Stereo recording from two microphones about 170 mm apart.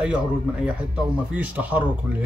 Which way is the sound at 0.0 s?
5° right (ahead or behind).